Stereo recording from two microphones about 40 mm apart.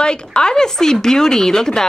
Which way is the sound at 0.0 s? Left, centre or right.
Left.